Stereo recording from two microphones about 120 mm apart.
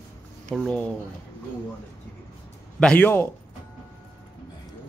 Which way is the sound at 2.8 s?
10° left (ahead or behind).